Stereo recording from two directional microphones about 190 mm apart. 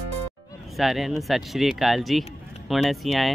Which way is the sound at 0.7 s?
Centre (ahead or behind).